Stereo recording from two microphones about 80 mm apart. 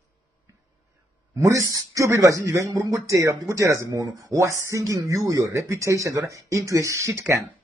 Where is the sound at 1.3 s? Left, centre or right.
Right.